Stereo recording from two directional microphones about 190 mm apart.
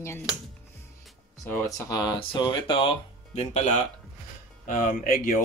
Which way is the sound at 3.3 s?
35° left (ahead or behind).